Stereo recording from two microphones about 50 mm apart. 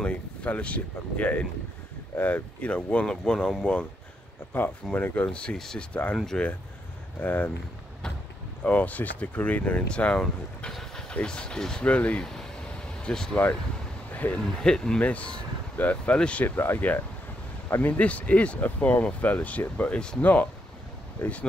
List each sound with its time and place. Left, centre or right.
0.0 s speech: left
4.9 s speech: left
7.2 s speech: left
8.6 s speech: left
10.7 s vehicle: centre
11.1 s speech: centre
11.8 s speech: left
13.0 s speech: centre
14.1 s speech: left
14.6 s speech: centre
15.0 s speech: left
16.4 s speech: left
17.8 s speech: left